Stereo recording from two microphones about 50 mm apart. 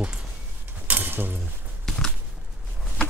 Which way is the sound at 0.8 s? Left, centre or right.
Right.